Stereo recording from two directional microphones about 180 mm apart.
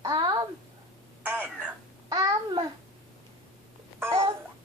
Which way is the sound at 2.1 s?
20° right (ahead or behind).